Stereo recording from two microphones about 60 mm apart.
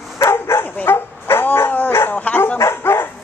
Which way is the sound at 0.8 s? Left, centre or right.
Left.